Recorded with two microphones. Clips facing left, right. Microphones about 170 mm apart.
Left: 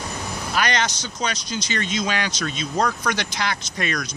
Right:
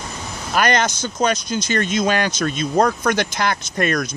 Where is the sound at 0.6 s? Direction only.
50° right (ahead or behind).